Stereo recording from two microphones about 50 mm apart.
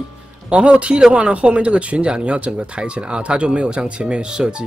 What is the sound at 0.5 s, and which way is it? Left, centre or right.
Speech, right.